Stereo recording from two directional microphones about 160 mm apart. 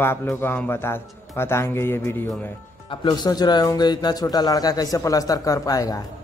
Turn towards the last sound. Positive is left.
turn(degrees=20)  # may be behind; listen again after turning